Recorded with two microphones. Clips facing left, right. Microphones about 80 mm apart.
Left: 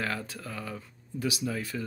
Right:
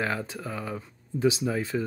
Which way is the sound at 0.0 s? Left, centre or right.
Centre.